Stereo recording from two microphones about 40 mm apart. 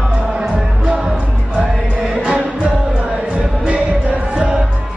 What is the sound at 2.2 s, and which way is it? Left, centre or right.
Music, right.